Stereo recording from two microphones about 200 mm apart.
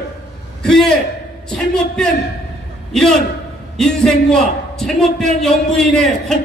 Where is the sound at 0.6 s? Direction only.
5° left (ahead or behind).